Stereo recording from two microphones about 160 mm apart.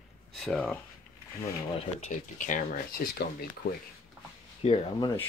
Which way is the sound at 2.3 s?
55° left (ahead or behind).